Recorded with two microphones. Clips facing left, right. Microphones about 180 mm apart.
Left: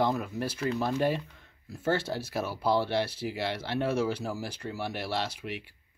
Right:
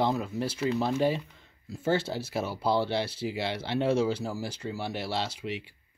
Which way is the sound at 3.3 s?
20° right (ahead or behind).